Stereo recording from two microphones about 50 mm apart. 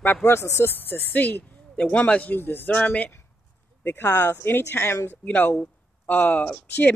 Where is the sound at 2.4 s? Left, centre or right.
Left.